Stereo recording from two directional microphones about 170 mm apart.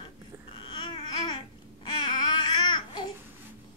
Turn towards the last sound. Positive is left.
turn(degrees=25)  # may be behind; listen again after turning